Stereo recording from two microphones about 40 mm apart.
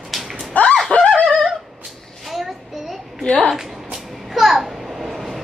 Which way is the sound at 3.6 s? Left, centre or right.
Centre.